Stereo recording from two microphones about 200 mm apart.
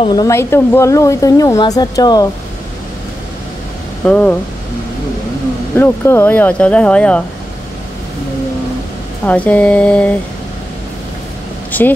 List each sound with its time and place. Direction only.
0.0 s speech: 20° left (ahead or behind)
4.0 s speech: 5° left (ahead or behind)
5.8 s speech: 10° left (ahead or behind)
9.2 s speech: 5° left (ahead or behind)
11.7 s speech: 10° left (ahead or behind)